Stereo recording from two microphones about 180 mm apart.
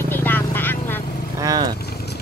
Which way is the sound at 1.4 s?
20° right (ahead or behind).